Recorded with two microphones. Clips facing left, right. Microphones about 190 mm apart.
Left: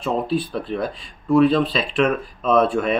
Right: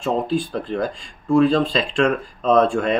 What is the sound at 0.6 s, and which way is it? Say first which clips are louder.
Speech: right 1 dB; 5° left (ahead or behind).